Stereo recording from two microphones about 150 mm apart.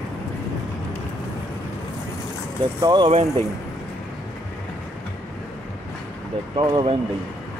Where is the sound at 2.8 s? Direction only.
30° right (ahead or behind).